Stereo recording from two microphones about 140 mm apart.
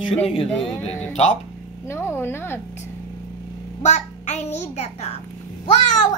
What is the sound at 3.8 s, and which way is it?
Child singing, 55° left (ahead or behind).